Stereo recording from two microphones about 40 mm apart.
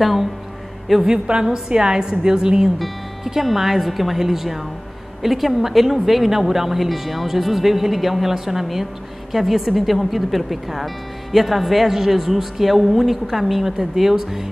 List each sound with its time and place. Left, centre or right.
0.0 s a woman's voice: centre
1.0 s a woman's voice: centre
3.3 s a woman's voice: centre